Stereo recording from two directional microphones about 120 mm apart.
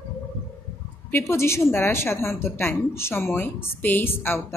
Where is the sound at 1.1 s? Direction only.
20° left (ahead or behind).